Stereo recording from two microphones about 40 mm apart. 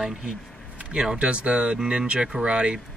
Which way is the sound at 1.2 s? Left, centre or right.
Right.